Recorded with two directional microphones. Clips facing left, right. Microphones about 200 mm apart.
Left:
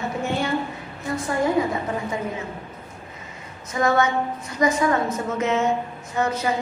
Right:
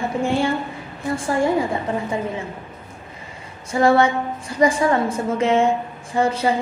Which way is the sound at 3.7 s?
30° right (ahead or behind).